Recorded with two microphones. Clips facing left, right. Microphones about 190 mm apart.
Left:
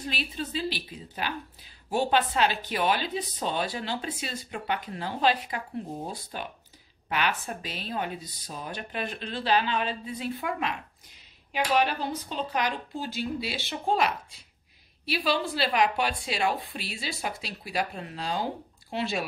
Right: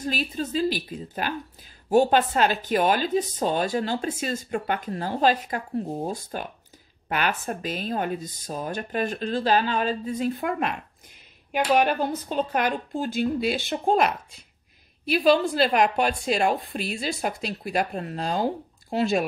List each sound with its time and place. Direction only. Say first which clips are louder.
0.0 s a woman's voice: right 5 dB; 45° right (ahead or behind)